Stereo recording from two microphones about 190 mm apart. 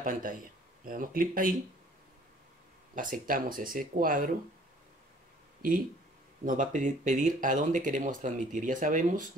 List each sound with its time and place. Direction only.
0.0 s speech: 45° right (ahead or behind)
2.9 s speech: 45° right (ahead or behind)
6.4 s speech: 45° right (ahead or behind)